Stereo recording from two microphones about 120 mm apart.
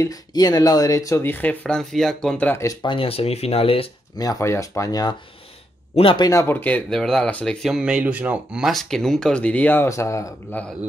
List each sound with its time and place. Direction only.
0.0 s speech: 30° left (ahead or behind); by 2.6 s 10° left (ahead or behind)
2.6 s speech: 30° left (ahead or behind)
2.9 s speech: 50° left (ahead or behind)
4.2 s speech: 30° left (ahead or behind)
5.9 s speech: 50° left (ahead or behind)
6.2 s speech: 25° left (ahead or behind)
7.7 s speech: 5° right (ahead or behind); by 10.3 s 25° left (ahead or behind)
10.5 s speech: 15° left (ahead or behind)